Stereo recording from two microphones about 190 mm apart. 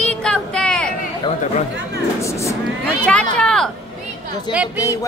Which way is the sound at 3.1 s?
5° left (ahead or behind).